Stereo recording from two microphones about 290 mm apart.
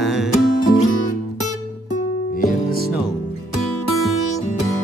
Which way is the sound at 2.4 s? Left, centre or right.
Left.